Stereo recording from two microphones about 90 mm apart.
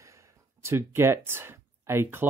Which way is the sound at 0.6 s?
30° right (ahead or behind).